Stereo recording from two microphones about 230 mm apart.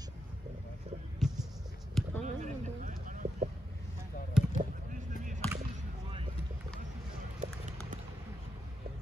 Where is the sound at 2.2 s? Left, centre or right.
Right.